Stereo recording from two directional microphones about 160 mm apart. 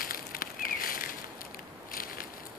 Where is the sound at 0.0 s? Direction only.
65° left (ahead or behind).